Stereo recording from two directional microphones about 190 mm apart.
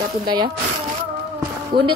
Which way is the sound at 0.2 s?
25° right (ahead or behind).